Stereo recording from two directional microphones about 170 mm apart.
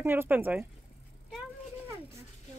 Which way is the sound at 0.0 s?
10° right (ahead or behind).